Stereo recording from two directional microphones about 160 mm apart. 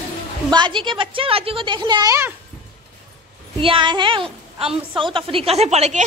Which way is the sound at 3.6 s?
30° right (ahead or behind).